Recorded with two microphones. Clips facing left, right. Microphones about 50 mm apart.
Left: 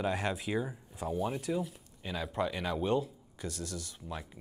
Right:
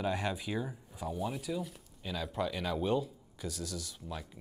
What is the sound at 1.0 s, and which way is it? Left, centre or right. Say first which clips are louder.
Speech: left 3 dB; left.